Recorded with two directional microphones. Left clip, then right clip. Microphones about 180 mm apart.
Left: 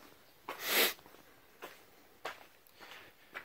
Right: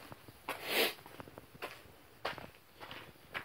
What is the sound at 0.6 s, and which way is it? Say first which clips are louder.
Sneeze: left 2 dB; 25° left (ahead or behind).